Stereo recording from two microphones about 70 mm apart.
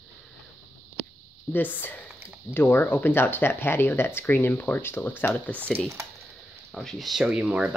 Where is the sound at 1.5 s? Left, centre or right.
Left.